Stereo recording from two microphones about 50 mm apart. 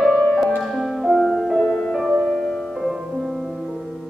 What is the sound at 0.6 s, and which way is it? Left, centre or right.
Music, centre.